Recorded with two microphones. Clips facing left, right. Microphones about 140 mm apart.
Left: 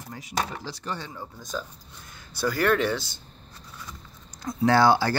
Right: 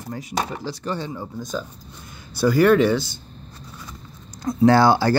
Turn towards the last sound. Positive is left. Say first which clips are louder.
# right 4 dB
turn(degrees=-35)  # may be behind; listen again after turning